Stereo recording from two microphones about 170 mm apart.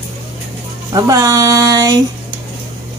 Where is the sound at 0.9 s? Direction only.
20° right (ahead or behind).